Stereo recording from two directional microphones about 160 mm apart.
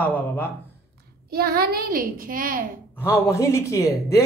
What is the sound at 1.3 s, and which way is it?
A child's voice, 75° right (ahead or behind).